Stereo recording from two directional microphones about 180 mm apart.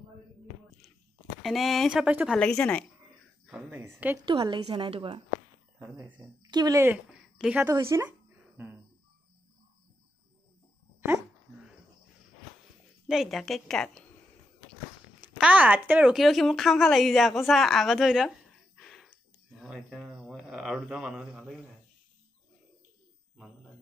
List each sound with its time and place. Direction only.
1.4 s speech: centre (ahead or behind)
2.3 s a woman's voice: 5° left (ahead or behind)
3.4 s a sound: 10° right (ahead or behind)
4.3 s a woman's voice: 25° right (ahead or behind)
6.5 s speech: 20° right (ahead or behind)
7.1 s a sound: 5° right (ahead or behind)
7.7 s speech: 15° right (ahead or behind)
13.1 s speech: centre (ahead or behind)
15.1 s speech: 10° right (ahead or behind)
18.8 s a sound: 5° left (ahead or behind)